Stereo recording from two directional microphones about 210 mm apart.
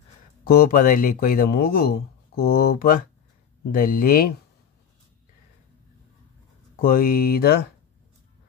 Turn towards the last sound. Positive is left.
turn(degrees=45)  # may be behind; listen again after turning